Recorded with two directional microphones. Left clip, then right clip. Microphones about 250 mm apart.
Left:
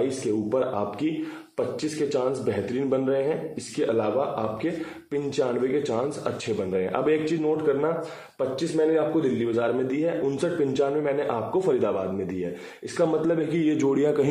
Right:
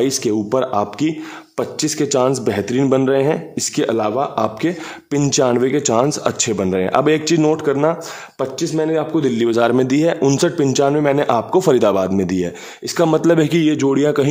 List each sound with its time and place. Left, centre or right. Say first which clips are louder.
0.0 s a man's voice: right 8 dB; right